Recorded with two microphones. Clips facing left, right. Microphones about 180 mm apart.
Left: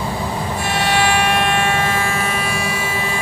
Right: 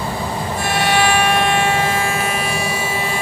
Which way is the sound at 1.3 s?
20° right (ahead or behind).